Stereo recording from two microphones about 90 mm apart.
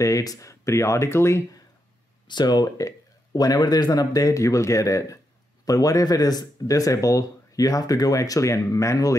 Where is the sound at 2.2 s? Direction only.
50° left (ahead or behind).